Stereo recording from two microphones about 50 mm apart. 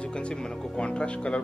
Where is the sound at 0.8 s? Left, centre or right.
Centre.